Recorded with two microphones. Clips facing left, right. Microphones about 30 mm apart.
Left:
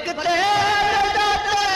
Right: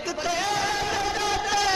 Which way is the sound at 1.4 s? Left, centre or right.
Centre.